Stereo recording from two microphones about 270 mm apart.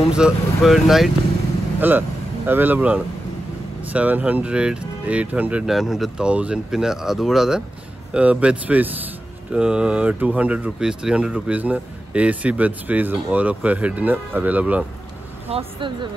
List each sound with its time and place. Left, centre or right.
0.1 s speech: centre
15.4 s speech: centre